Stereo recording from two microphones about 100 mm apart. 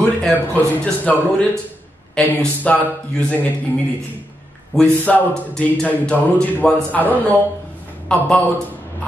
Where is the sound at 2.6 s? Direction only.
15° left (ahead or behind).